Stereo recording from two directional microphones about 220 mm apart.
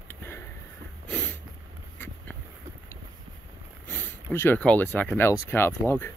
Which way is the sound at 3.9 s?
10° left (ahead or behind).